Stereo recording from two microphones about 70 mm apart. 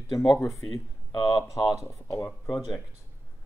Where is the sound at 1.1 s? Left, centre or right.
Left.